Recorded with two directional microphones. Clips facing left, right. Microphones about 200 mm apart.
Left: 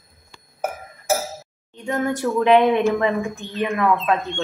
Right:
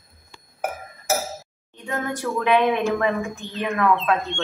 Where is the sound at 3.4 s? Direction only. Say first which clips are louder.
Left 1 dB; 15° left (ahead or behind).